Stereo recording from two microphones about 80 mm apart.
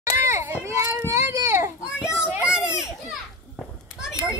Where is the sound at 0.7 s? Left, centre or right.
Right.